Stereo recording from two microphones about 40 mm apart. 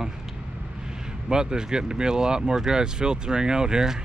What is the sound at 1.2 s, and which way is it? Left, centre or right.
Speech, centre.